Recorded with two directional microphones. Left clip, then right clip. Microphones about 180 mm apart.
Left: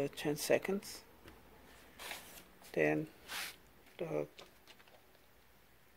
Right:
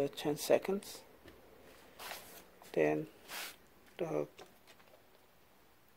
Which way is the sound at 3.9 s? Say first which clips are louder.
Right 2 dB; 15° right (ahead or behind).